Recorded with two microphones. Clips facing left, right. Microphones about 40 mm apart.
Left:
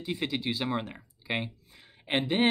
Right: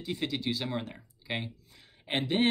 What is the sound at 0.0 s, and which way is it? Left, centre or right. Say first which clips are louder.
Speech: left 1 dB; centre.